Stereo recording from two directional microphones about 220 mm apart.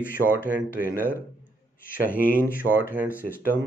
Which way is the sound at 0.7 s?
40° left (ahead or behind).